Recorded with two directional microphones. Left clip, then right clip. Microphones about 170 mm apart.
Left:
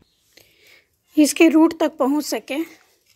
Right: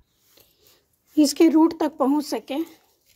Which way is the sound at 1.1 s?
10° right (ahead or behind).